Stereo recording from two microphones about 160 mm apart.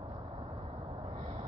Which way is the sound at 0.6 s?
35° right (ahead or behind).